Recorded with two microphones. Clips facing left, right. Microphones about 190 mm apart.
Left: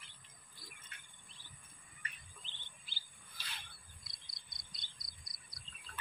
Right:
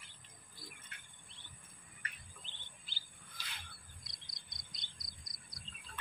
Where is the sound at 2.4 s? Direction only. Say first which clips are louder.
Right 1 dB; 45° right (ahead or behind).